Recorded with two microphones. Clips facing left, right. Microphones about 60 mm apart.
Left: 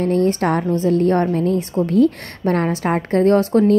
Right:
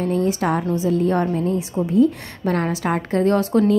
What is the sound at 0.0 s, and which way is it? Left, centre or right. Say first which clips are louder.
A woman's voice: left 3 dB; left.